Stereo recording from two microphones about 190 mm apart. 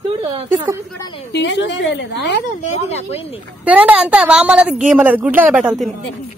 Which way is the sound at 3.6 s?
10° right (ahead or behind).